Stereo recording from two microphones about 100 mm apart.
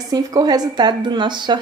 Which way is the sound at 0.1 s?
40° right (ahead or behind).